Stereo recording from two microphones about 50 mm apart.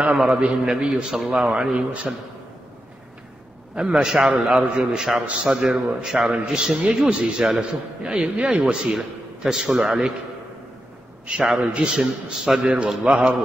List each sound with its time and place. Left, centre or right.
0.3 s a man's voice: centre
3.7 s a man's voice: centre
9.4 s a man's voice: centre
11.2 s a man's voice: centre